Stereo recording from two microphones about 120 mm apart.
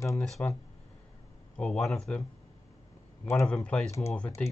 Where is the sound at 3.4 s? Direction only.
10° left (ahead or behind).